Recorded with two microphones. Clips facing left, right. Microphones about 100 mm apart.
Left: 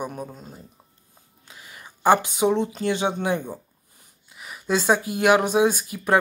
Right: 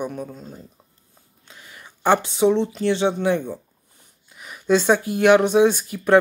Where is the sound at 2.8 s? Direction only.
15° left (ahead or behind).